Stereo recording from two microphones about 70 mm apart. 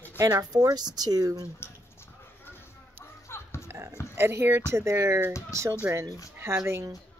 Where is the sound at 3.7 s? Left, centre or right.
Right.